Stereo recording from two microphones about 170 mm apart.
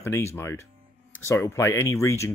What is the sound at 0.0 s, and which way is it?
Speech, 15° left (ahead or behind).